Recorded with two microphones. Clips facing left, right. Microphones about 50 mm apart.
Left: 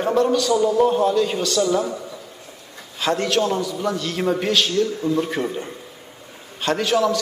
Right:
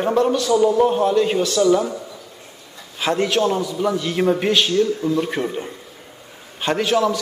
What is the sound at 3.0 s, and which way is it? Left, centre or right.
A man's voice, centre.